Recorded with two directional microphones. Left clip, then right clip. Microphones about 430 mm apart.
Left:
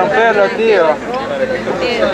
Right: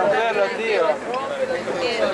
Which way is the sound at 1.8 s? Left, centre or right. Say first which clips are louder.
Left 7 dB; centre.